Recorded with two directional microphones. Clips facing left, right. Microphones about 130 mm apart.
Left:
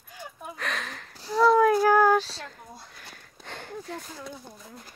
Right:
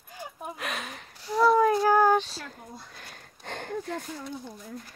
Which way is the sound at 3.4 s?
50° right (ahead or behind).